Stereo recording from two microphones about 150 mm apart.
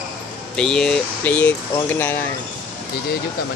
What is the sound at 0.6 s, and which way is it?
Speech, 5° left (ahead or behind).